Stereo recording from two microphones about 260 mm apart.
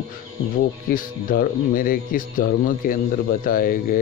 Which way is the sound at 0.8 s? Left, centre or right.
Left.